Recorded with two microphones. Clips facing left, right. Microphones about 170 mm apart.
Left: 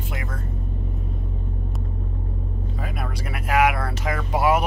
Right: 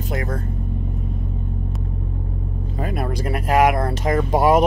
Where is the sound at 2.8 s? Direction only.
40° right (ahead or behind).